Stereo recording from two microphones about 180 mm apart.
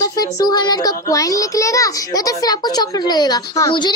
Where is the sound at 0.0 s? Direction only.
20° left (ahead or behind).